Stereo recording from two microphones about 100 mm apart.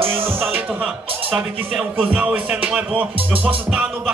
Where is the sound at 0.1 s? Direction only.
25° right (ahead or behind).